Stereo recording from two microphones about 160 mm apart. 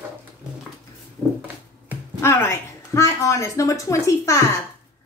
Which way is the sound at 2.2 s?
15° left (ahead or behind).